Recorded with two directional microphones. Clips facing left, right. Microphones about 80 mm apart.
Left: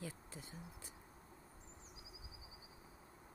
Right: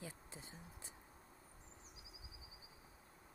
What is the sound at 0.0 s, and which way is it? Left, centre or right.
Insect, centre.